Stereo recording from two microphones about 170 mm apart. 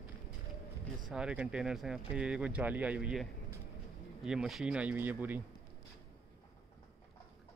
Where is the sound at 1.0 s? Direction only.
5° right (ahead or behind).